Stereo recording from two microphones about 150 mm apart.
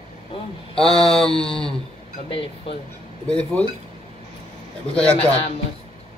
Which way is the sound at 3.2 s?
5° left (ahead or behind).